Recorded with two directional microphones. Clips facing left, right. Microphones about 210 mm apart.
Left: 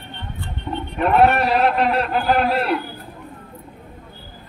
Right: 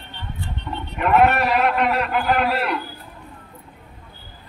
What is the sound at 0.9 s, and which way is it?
A man's voice, 35° left (ahead or behind).